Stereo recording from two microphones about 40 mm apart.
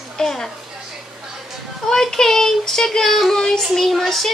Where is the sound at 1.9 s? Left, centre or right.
Centre.